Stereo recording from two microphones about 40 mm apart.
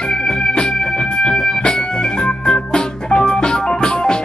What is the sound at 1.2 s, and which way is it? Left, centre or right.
Music, left.